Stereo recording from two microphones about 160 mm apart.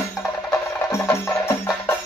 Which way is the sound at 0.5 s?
15° left (ahead or behind).